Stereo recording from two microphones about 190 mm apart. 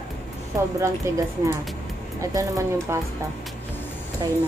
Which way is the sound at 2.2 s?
15° right (ahead or behind).